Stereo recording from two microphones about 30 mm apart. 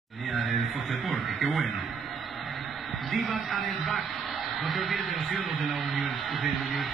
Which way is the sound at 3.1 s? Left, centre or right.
Centre.